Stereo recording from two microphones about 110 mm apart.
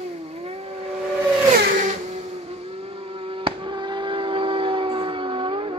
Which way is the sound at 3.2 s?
50° right (ahead or behind).